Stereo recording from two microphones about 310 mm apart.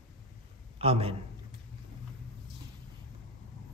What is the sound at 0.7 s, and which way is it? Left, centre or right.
Speech, centre.